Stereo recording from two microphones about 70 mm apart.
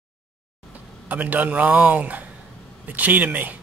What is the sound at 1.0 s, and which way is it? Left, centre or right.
Speech, right.